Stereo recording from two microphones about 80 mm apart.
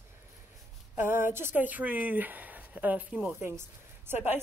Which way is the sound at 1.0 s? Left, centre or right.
Right.